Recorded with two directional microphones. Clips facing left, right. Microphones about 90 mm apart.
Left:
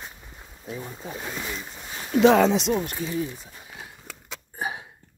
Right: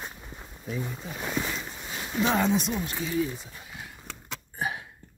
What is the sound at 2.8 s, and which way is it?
Speech, 55° left (ahead or behind).